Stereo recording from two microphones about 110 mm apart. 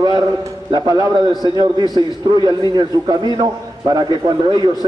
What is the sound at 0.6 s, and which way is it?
A man's voice, 40° right (ahead or behind).